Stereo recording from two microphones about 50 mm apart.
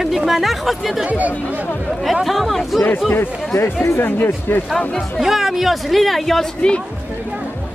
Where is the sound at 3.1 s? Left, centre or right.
Left.